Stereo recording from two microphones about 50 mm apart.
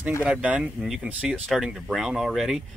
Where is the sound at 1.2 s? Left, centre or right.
Centre.